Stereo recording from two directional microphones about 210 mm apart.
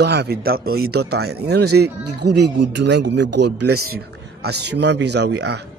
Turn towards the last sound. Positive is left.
turn(degrees=-55)  # may be behind; listen again after turning